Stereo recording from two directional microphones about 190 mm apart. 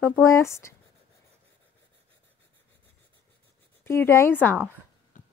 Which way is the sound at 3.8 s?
15° left (ahead or behind).